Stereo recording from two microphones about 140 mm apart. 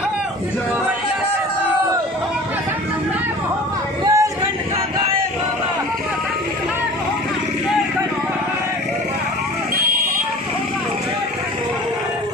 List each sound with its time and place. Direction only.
4.0 s chatter: 20° right (ahead or behind)